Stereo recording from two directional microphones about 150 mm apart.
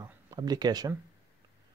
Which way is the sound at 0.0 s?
25° right (ahead or behind).